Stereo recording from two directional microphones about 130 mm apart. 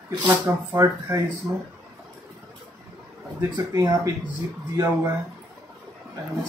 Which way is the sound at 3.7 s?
30° right (ahead or behind).